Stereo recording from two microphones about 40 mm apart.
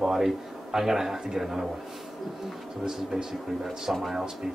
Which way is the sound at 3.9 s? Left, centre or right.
Right.